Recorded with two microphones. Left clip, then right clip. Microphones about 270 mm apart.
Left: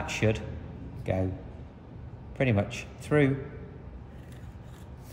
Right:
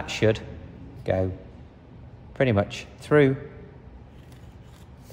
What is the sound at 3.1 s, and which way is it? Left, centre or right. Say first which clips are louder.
Speech: right 6 dB; right.